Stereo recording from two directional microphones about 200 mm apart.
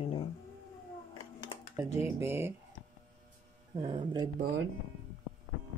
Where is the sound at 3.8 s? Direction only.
25° right (ahead or behind).